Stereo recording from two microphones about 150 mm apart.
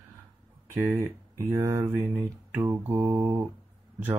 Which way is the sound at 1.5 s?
20° right (ahead or behind).